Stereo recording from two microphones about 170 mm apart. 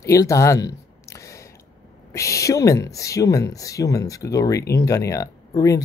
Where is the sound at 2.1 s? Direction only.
20° left (ahead or behind).